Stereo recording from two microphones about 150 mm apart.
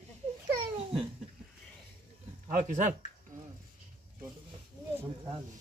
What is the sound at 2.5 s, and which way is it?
Speech, 60° right (ahead or behind).